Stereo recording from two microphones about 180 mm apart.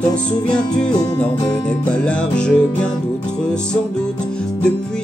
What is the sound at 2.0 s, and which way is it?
Music, 5° left (ahead or behind).